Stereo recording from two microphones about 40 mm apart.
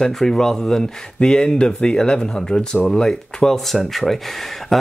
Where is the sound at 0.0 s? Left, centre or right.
Centre.